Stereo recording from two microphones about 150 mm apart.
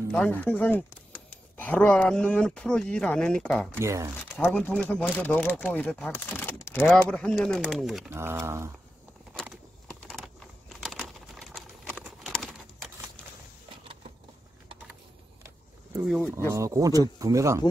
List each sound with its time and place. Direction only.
0.1 s speech: 10° left (ahead or behind)
3.7 s speech: 20° right (ahead or behind)
4.2 s speech: 10° left (ahead or behind)
6.1 s typing: 15° left (ahead or behind)
6.9 s speech: 5° left (ahead or behind)
8.1 s speech: 15° right (ahead or behind)
9.3 s a sound: 5° right (ahead or behind)
12.0 s typing: centre (ahead or behind)
16.2 s speech: 15° left (ahead or behind)
16.5 s speech: 20° right (ahead or behind)